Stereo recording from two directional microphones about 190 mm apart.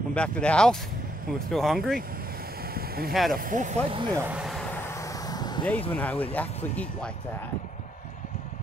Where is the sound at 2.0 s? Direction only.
50° right (ahead or behind).